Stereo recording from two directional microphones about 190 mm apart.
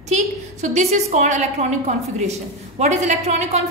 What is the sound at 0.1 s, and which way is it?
A woman's voice, 40° right (ahead or behind).